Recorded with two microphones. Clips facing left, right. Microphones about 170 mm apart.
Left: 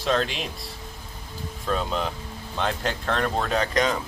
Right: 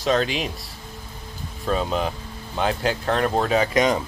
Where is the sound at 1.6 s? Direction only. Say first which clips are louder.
Right 3 dB; 5° right (ahead or behind).